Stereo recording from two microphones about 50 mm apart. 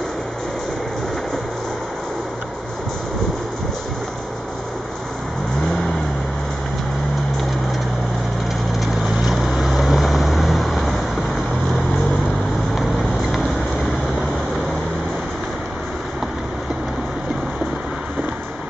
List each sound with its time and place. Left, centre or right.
9.2 s vehicle: centre